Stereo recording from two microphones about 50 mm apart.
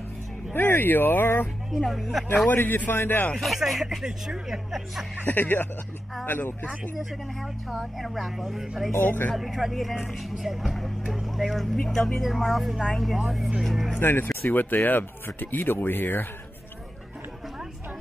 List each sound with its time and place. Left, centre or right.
0.5 s speech: left
1.8 s speech: centre
2.5 s speech: left
3.3 s speech: centre
5.2 s speech: left
7.7 s speech: centre
8.9 s speech: left
9.3 s speech: centre
13.9 s speech: left
14.5 s speech: left